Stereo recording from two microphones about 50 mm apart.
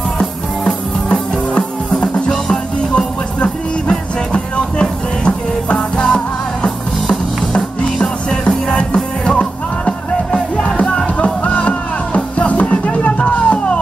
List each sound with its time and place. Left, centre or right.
1.1 s music: left